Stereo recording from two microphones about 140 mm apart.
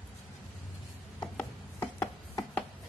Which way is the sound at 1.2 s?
20° left (ahead or behind).